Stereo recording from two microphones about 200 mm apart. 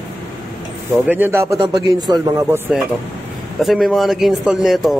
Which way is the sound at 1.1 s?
10° right (ahead or behind).